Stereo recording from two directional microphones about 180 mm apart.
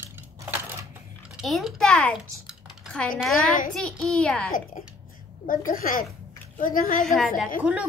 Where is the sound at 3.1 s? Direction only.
Centre (ahead or behind).